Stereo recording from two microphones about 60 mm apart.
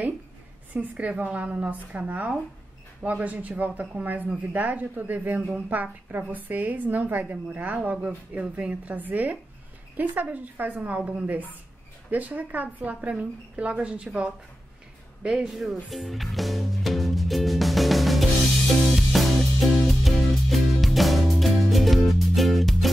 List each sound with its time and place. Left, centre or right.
0.7 s a woman's voice: right
12.1 s a woman's voice: right
15.4 s music: centre